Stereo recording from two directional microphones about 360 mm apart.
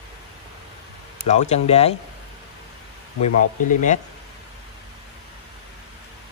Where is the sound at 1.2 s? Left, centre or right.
Centre.